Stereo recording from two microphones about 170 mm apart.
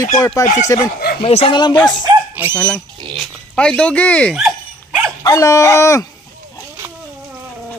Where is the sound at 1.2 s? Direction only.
30° left (ahead or behind).